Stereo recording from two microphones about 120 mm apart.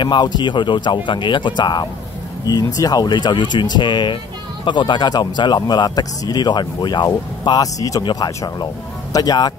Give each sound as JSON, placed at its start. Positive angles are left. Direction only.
{"t": 0.0, "sound": "speech", "side_deg": 40}